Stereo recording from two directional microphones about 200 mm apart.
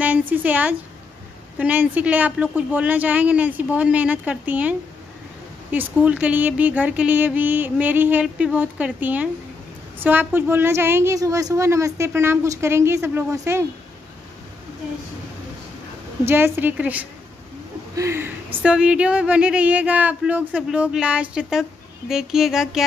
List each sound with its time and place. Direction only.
0.0 s a woman's voice: 10° right (ahead or behind)
16.3 s a woman's voice: 10° right (ahead or behind)